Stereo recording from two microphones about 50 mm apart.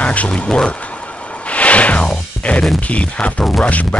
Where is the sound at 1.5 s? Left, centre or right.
Left.